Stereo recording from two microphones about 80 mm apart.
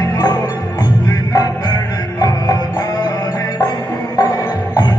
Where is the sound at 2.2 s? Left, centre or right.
Left.